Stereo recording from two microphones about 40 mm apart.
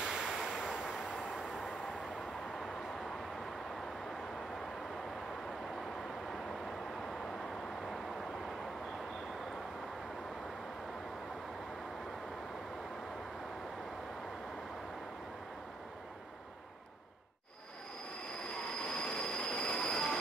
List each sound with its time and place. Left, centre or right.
0.0 s a sound: centre
1.3 s vehicle: centre
18.9 s train wheels squealing: left